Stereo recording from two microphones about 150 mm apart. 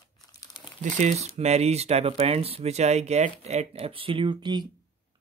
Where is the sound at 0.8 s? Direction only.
55° right (ahead or behind); by 4.6 s 30° right (ahead or behind).